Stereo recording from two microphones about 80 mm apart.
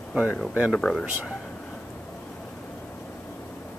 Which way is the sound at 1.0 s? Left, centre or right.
Centre.